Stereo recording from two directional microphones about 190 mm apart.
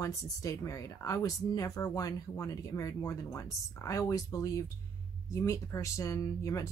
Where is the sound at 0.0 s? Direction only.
15° left (ahead or behind).